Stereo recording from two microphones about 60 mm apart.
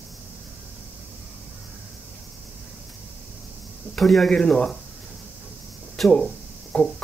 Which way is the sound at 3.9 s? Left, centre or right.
Centre.